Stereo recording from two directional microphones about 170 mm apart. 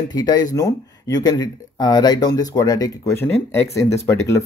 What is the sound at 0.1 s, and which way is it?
Speech, 25° left (ahead or behind).